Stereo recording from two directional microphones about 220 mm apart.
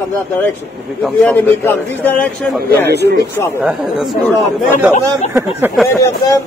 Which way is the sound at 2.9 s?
50° right (ahead or behind).